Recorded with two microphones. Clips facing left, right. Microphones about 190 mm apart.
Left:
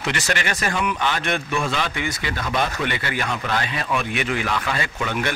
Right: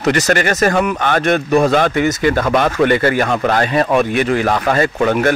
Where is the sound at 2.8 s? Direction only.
45° right (ahead or behind).